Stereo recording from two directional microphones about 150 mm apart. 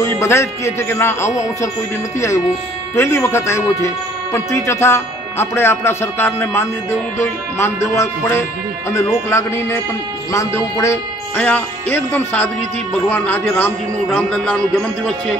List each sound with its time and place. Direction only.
0.0 s speech: 20° left (ahead or behind)